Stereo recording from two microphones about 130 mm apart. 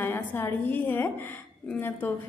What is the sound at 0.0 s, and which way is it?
A woman's voice, 15° left (ahead or behind).